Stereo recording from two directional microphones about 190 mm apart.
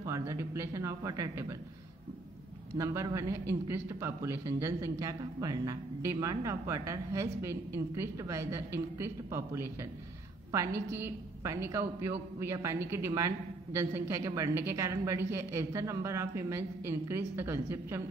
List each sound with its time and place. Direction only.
0.0 s a man's voice: 15° right (ahead or behind)
2.8 s a man's voice: 15° right (ahead or behind)